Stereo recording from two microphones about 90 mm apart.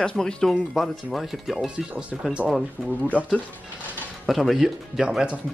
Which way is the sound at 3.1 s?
15° left (ahead or behind).